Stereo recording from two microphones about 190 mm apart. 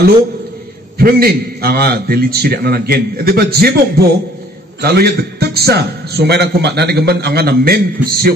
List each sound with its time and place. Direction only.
0.9 s a man's voice: 55° right (ahead or behind)